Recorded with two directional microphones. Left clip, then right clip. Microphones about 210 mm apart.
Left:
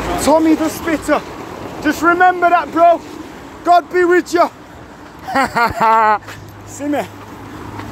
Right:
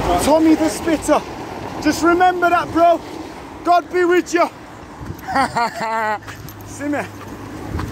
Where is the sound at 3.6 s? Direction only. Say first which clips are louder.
Left 3 dB; 25° left (ahead or behind).